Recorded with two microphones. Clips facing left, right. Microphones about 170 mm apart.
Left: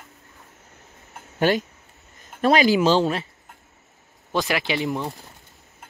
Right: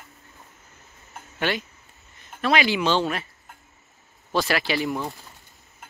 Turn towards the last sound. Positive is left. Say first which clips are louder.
# even
turn(degrees=20)  # may be behind; listen again after turning